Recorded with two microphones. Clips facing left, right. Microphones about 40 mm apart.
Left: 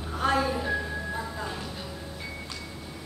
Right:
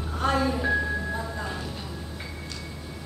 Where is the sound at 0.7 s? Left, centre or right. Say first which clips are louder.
Right 4 dB; centre.